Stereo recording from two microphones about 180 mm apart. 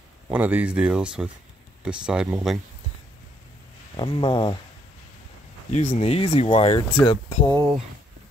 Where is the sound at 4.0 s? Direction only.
25° left (ahead or behind).